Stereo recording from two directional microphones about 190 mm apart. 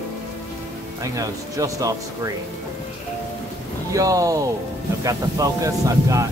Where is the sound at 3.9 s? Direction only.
15° right (ahead or behind).